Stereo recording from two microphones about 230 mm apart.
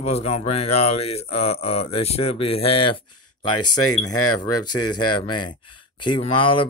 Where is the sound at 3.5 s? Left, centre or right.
Left.